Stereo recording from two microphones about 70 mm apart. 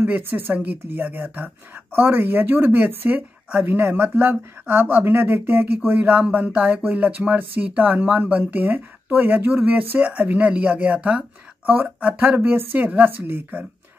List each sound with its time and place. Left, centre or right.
0.0 s speech: right